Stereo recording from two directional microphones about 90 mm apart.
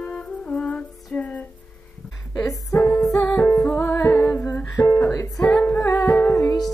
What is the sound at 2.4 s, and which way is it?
Music, 35° left (ahead or behind).